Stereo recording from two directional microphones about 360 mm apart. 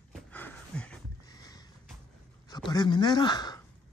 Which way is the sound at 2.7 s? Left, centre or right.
Centre.